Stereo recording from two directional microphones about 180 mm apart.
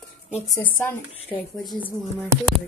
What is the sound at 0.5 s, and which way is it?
A woman's voice, 10° left (ahead or behind).